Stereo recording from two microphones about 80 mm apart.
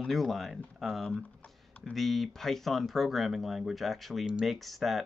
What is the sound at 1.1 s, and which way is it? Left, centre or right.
Typing, centre.